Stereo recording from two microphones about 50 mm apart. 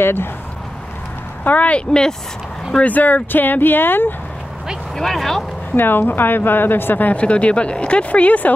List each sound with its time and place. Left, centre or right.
0.0 s speech: left
1.4 s speech: left
1.9 s speech: centre
2.8 s speech: left
4.9 s speech: centre
5.8 s speech: left
7.2 s speech: left